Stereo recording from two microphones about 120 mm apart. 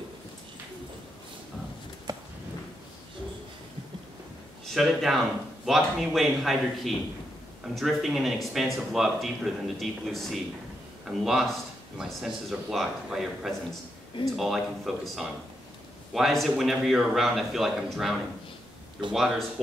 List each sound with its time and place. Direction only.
2.1 s a sound: 35° right (ahead or behind)
4.6 s speech: centre (ahead or behind)
19.1 s speech: centre (ahead or behind)